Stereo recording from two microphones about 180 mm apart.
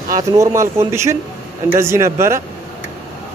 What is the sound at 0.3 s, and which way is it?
Speech, 15° right (ahead or behind).